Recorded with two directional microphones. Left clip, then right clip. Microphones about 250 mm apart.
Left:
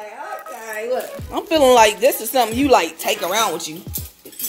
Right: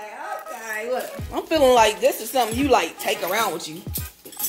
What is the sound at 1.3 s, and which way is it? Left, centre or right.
Speech, centre.